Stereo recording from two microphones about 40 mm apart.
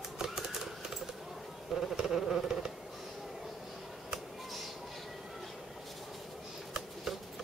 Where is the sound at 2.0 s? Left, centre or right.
Centre.